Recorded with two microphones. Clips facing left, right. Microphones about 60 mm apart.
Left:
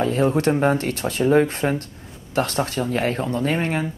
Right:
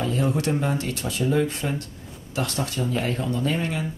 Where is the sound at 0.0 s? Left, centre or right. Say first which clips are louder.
Left 5 dB; left.